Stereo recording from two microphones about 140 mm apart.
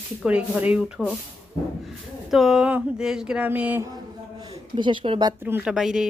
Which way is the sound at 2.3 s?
5° right (ahead or behind).